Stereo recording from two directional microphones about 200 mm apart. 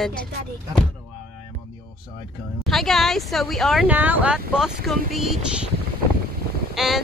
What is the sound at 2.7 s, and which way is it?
Speech, centre (ahead or behind).